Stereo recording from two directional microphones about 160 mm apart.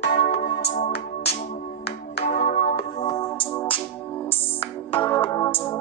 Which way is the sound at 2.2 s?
65° left (ahead or behind).